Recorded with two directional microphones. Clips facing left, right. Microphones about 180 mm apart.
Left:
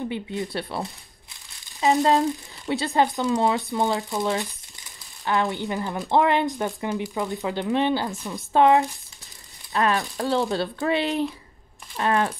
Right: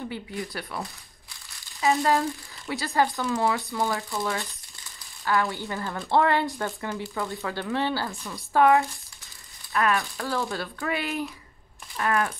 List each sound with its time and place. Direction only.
0.1 s speech: 25° left (ahead or behind)